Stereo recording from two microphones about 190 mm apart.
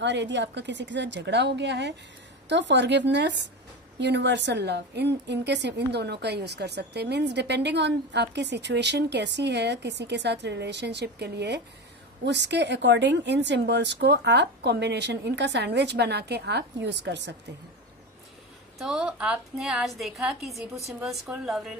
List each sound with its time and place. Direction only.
0.0 s a woman's voice: 70° right (ahead or behind)
18.8 s a woman's voice: 5° right (ahead or behind)